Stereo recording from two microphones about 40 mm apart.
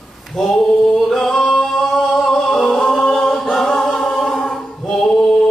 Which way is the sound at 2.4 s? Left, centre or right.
Centre.